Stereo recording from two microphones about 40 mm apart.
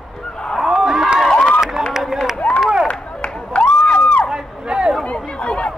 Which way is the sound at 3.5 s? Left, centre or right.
Left.